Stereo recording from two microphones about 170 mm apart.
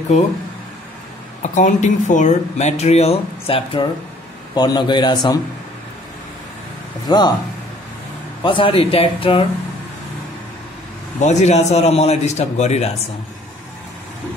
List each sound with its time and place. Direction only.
1.4 s a man's voice: 45° left (ahead or behind); by 5.4 s 25° left (ahead or behind)
7.1 s a man's voice: 25° left (ahead or behind)
8.4 s a man's voice: 30° left (ahead or behind)
11.1 s a man's voice: 40° left (ahead or behind)